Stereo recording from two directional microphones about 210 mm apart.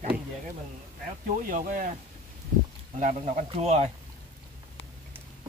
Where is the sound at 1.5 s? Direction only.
40° right (ahead or behind).